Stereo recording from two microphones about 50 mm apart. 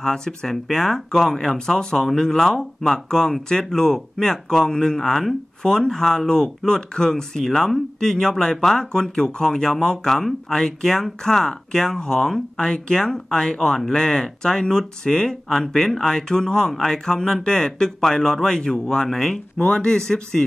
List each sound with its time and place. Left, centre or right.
0.0 s speech: centre
19.6 s speech: left
20.0 s speech: centre